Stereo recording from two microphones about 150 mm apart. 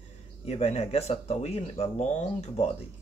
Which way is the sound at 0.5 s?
45° left (ahead or behind).